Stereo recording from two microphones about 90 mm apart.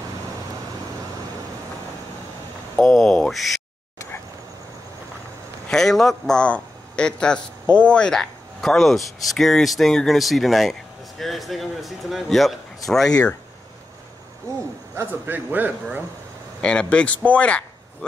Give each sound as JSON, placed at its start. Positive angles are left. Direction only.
{"t": 2.8, "sound": "speech", "side_deg": 5}
{"t": 5.7, "sound": "speech", "side_deg": 5}
{"t": 15.0, "sound": "a man's voice", "side_deg": -25}
{"t": 16.6, "sound": "speech", "side_deg": 10}